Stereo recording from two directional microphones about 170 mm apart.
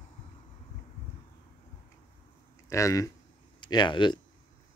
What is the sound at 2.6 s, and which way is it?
Speech, 20° left (ahead or behind).